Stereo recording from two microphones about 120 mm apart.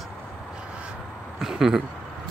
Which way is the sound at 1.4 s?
5° right (ahead or behind).